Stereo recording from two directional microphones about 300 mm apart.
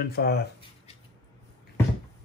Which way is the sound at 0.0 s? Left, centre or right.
Left.